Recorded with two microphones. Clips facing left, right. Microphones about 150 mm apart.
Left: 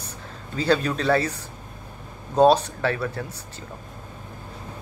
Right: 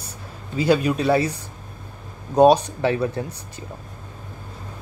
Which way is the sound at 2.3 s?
15° right (ahead or behind).